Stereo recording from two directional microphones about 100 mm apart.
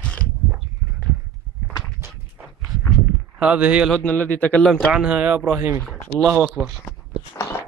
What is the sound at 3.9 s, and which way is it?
Speech, 15° left (ahead or behind).